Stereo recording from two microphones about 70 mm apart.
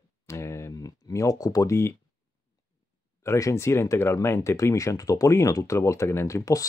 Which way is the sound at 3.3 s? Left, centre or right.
Left.